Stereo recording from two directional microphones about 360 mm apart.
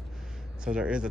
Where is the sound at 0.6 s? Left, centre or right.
Centre.